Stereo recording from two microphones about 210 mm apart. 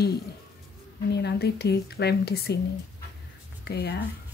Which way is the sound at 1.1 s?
50° left (ahead or behind).